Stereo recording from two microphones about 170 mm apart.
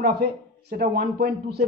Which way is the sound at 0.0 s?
65° right (ahead or behind).